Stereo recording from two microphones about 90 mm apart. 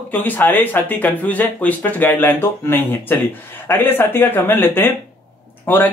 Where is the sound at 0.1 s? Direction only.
20° left (ahead or behind).